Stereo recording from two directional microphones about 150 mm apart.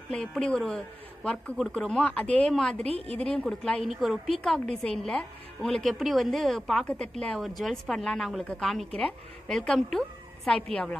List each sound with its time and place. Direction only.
0.1 s a woman's voice: 5° left (ahead or behind)
2.8 s a woman's voice: 40° right (ahead or behind)
3.2 s a woman's voice: 5° left (ahead or behind)